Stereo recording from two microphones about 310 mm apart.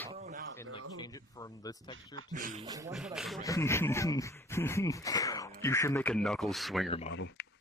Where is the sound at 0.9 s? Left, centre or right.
Centre.